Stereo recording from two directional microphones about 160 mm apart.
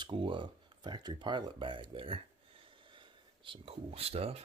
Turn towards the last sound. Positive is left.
turn(degrees=-40)  # may be behind; listen again after turning